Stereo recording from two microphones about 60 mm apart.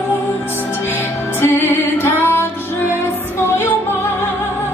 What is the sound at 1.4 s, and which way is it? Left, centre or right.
Music, left.